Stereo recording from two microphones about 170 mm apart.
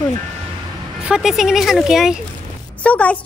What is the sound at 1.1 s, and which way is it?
Speech, 5° right (ahead or behind).